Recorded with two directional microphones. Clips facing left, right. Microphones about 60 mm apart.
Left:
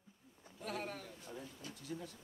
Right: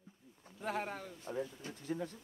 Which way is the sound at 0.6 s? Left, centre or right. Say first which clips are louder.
Right 5 dB; right.